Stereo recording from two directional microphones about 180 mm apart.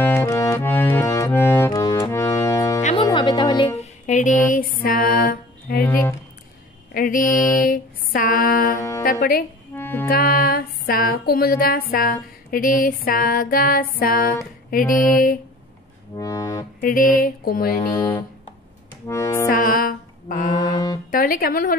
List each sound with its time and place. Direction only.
0.0 s music: 15° left (ahead or behind)
4.0 s music: 45° left (ahead or behind)
5.9 s a sound: 15° left (ahead or behind)
6.9 s a sound: 50° left (ahead or behind)
9.0 s speech: 55° left (ahead or behind)
9.8 s music: 10° left (ahead or behind)
10.0 s music: 55° left (ahead or behind)
16.2 s music: 20° left (ahead or behind)
16.8 s music: 50° left (ahead or behind)
19.0 s accordion: 15° left (ahead or behind)
19.5 s music: 55° left (ahead or behind)